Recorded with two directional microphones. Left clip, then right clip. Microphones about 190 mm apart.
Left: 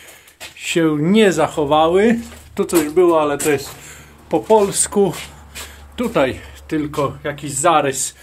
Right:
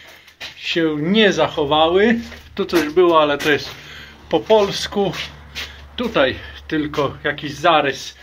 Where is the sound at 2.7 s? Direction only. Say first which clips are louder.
Even; 15° left (ahead or behind).